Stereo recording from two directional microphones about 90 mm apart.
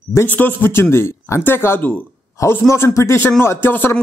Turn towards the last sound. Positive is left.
turn(degrees=25)  # may be behind; listen again after turning